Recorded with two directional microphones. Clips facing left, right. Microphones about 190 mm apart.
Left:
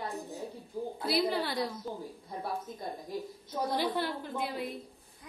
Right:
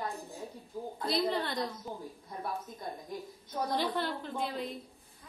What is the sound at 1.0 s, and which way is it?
Speech, 5° left (ahead or behind).